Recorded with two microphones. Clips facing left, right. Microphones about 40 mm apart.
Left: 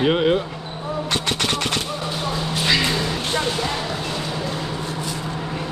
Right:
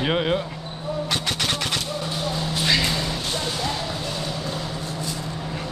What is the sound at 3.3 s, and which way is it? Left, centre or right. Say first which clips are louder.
Music: left 5 dB; left.